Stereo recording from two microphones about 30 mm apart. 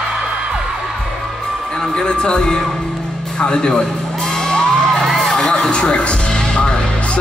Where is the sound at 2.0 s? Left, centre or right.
Left.